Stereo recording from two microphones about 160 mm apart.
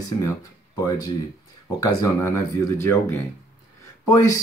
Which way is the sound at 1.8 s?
20° left (ahead or behind).